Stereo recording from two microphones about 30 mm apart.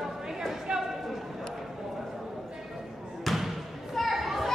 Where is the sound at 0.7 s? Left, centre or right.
Right.